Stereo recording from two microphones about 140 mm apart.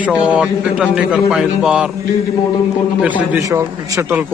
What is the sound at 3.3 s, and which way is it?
Speech, 20° right (ahead or behind).